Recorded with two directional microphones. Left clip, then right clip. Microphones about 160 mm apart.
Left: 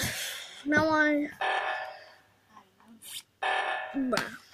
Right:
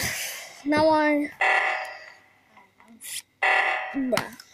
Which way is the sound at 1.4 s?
55° right (ahead or behind).